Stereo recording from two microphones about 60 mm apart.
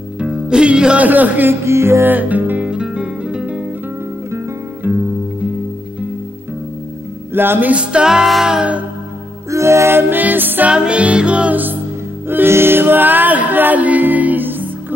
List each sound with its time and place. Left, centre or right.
0.2 s music: centre
1.0 s music: right
1.5 s music: right
2.0 s music: right
2.7 s music: centre
4.8 s music: right
7.3 s music: right
7.7 s music: centre
9.5 s music: right
10.7 s music: centre
12.3 s music: right